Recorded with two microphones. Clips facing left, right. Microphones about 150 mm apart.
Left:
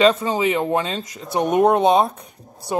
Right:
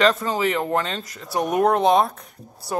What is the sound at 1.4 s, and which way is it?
A woman's voice, 25° left (ahead or behind).